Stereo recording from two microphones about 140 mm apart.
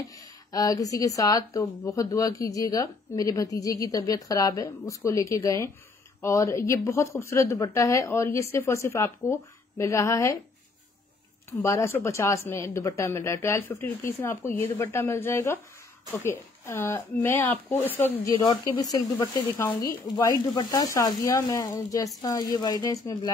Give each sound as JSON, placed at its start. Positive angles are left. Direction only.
{"t": 0.5, "sound": "speech", "side_deg": 25}
{"t": 11.6, "sound": "speech", "side_deg": 20}
{"t": 18.4, "sound": "speech", "side_deg": 25}